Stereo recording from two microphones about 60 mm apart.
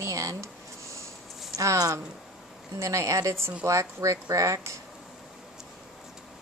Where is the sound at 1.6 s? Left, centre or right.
Right.